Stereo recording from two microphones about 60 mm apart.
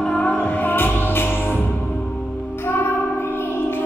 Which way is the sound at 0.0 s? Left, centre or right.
Centre.